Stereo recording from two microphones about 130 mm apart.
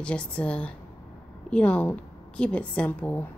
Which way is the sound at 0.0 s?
10° left (ahead or behind).